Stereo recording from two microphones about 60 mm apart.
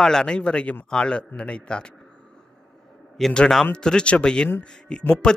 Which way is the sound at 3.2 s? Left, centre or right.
Centre.